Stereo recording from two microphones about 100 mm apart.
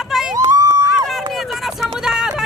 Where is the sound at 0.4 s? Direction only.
35° right (ahead or behind).